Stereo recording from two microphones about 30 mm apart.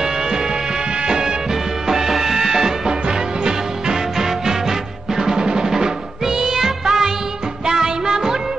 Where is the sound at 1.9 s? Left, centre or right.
Centre.